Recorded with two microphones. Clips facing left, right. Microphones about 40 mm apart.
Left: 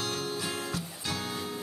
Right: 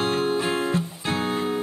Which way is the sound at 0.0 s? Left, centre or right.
Right.